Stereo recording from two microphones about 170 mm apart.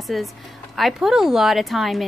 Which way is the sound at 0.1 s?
Centre (ahead or behind).